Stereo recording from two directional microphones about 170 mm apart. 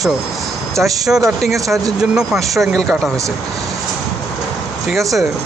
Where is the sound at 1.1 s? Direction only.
10° right (ahead or behind).